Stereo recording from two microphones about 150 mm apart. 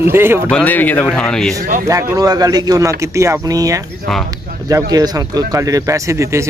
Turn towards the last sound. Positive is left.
turn(degrees=-20)  # may be behind; listen again after turning